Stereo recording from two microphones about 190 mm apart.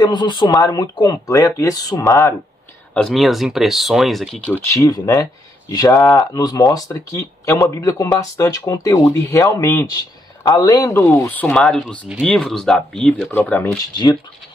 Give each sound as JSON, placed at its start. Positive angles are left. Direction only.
{"t": 0.0, "sound": "speech", "side_deg": 20}
{"t": 2.9, "sound": "speech", "side_deg": 0}
{"t": 4.6, "sound": "speech", "side_deg": 15}